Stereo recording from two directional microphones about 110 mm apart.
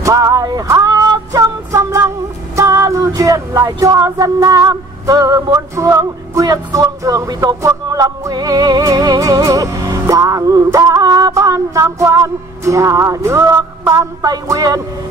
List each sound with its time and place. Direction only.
0.0 s music: 30° right (ahead or behind)